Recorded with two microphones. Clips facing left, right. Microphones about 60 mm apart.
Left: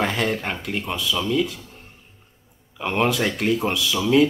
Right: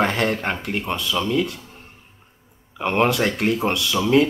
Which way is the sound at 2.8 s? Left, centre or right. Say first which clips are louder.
Right 2 dB; centre.